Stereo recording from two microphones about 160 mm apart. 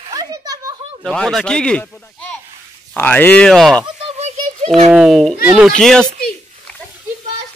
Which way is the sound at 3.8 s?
40° right (ahead or behind).